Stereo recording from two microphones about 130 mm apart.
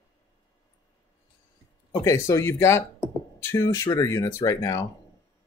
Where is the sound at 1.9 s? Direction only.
25° left (ahead or behind).